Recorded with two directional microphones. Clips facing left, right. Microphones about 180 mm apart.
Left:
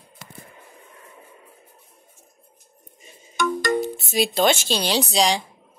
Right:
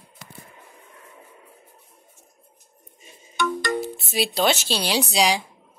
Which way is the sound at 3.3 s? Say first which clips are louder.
Left 2 dB; 45° left (ahead or behind).